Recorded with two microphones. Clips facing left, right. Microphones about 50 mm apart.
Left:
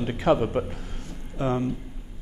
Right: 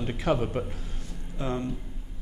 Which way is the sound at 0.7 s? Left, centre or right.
Left.